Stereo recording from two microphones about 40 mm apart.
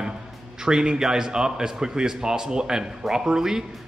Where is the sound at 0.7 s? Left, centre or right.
Centre.